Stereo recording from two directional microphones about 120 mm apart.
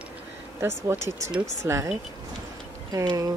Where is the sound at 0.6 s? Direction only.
20° right (ahead or behind).